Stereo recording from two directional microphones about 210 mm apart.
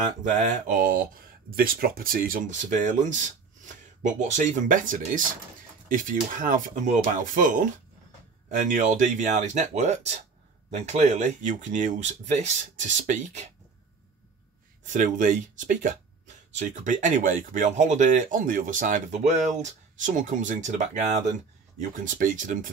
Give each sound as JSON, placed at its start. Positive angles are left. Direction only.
{"t": 0.5, "sound": "speech", "side_deg": -40}
{"t": 14.9, "sound": "speech", "side_deg": -40}